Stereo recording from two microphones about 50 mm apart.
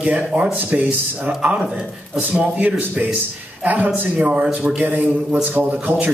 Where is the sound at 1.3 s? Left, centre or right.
Right.